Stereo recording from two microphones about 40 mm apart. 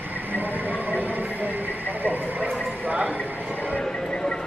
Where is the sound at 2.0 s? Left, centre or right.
Right.